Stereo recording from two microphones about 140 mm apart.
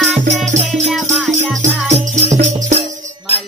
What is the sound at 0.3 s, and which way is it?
Music, 55° right (ahead or behind).